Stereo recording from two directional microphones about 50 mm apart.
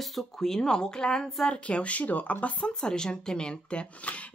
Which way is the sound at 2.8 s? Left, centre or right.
Centre.